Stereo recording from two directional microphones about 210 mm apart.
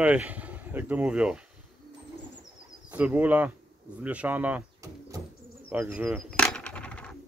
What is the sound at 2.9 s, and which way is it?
Speech, 5° right (ahead or behind).